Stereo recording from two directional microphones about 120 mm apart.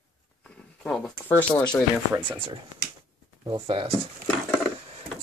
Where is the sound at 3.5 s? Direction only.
45° right (ahead or behind).